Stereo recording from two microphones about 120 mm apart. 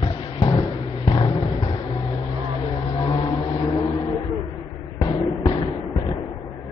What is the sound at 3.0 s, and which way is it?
Vehicle, 45° left (ahead or behind).